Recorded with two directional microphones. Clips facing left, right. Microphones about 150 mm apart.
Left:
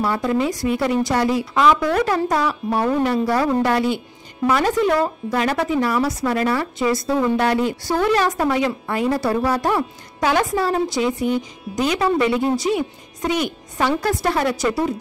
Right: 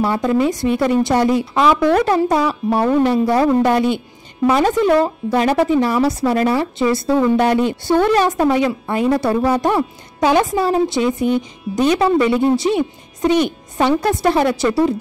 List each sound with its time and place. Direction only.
0.0 s speech: 25° right (ahead or behind)